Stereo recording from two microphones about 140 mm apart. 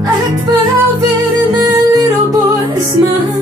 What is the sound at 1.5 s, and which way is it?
Music, 25° right (ahead or behind).